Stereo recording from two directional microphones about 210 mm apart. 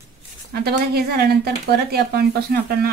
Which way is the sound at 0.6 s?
50° right (ahead or behind).